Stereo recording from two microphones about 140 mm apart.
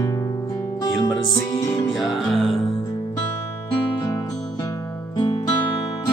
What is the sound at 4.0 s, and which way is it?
Music, 25° left (ahead or behind).